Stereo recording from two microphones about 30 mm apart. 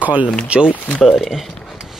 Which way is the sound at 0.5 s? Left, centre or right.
Right.